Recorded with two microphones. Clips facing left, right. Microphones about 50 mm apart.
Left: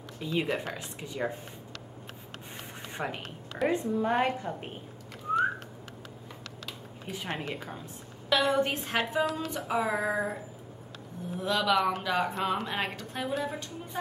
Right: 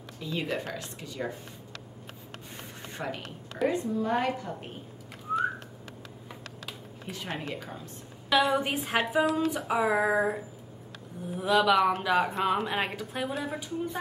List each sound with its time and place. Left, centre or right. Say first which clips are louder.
0.2 s speech: left 2 dB; centre
3.0 s a woman's voice: even; centre
7.1 s speech: left 1 dB; centre
8.3 s speech: right 1 dB; centre